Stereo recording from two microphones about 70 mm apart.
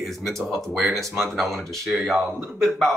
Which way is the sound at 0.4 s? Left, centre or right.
Centre.